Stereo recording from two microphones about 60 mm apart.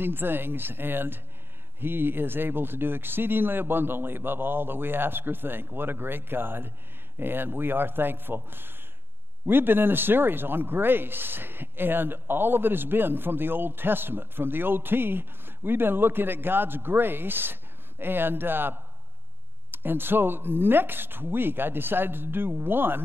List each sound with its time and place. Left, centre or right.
0.0 s speech: right